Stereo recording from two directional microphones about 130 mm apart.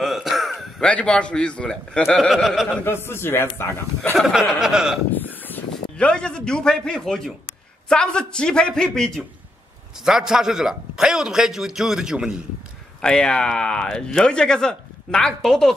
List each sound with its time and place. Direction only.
0.0 s a man's voice: centre (ahead or behind)
2.8 s a man's voice: 20° left (ahead or behind)
4.2 s speech: centre (ahead or behind)
5.1 s a man's voice: 15° left (ahead or behind); by 12.4 s 5° right (ahead or behind)
13.0 s speech: 5° left (ahead or behind)